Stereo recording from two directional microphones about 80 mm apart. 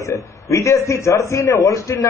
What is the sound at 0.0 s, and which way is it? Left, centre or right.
A man's voice, left.